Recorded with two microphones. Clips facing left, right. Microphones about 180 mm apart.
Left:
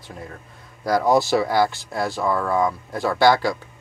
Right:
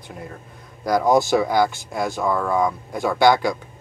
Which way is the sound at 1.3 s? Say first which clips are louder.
Right 1 dB; 5° right (ahead or behind).